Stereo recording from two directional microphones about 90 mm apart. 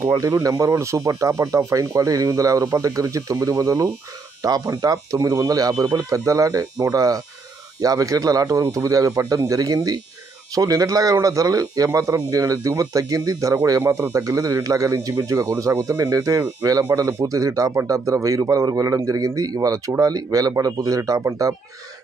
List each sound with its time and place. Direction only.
0.4 s speech: 40° right (ahead or behind)